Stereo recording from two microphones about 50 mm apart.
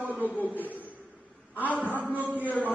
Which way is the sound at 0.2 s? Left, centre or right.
Right.